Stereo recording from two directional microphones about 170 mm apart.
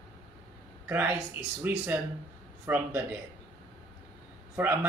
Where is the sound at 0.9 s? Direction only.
10° right (ahead or behind).